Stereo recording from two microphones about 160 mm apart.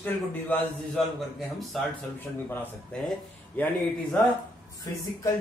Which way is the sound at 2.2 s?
10° left (ahead or behind).